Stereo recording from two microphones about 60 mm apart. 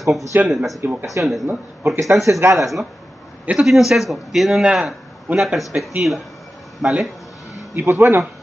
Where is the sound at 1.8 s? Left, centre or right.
Right.